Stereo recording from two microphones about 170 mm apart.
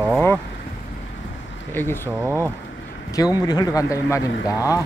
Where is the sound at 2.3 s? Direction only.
15° right (ahead or behind).